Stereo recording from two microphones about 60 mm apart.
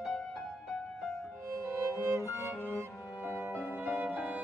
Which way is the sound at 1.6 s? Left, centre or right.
Right.